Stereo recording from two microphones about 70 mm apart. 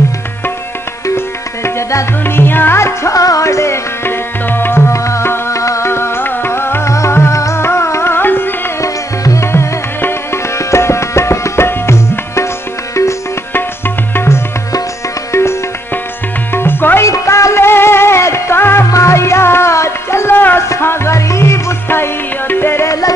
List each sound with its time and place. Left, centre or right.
1.0 s tabla: left
2.2 s music: left
8.8 s music: left
13.5 s music: left
16.5 s music: left
17.0 s music: left
22.8 s music: left